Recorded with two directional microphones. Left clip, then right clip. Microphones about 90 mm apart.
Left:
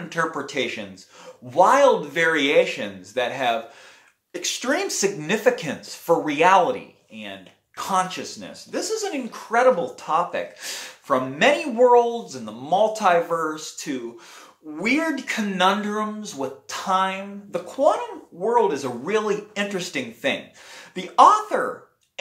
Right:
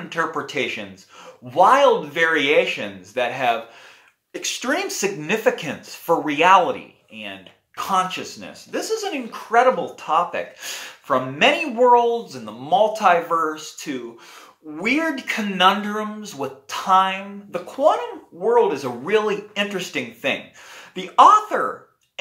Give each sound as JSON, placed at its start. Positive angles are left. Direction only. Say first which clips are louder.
{"t": 0.1, "sound": "speech", "louder": "right 1 dB", "side_deg": 15}
{"t": 14.8, "sound": "speech", "louder": "right 1 dB", "side_deg": 20}